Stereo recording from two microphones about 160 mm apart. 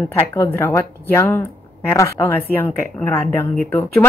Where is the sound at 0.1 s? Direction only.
15° left (ahead or behind).